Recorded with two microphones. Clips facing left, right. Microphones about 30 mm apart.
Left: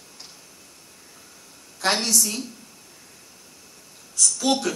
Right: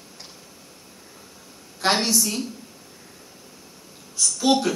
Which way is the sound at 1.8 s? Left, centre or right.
Centre.